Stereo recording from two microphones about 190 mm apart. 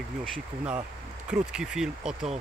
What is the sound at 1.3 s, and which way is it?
Speech, 5° right (ahead or behind).